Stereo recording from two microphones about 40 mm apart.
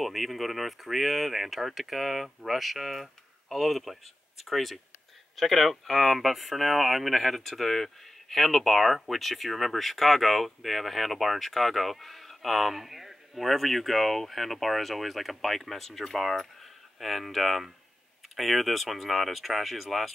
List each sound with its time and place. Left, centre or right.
0.0 s speech: centre